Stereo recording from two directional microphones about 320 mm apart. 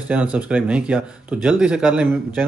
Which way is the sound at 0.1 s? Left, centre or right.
Centre.